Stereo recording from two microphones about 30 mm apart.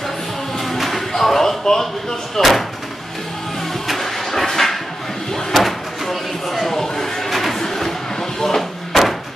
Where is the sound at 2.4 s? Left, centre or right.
Centre.